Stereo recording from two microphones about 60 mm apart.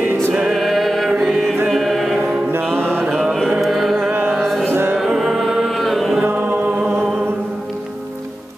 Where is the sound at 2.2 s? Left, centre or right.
Centre.